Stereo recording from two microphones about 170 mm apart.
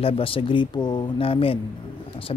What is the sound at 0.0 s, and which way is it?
Speech, 30° left (ahead or behind).